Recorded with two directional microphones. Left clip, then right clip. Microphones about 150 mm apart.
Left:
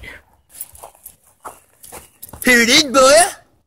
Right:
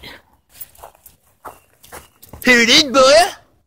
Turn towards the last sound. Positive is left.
turn(degrees=20)  # may be behind; listen again after turning